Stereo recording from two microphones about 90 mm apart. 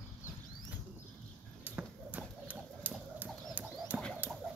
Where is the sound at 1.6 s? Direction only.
15° right (ahead or behind).